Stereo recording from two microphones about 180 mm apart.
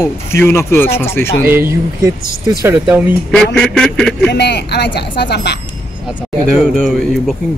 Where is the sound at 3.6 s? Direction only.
5° left (ahead or behind).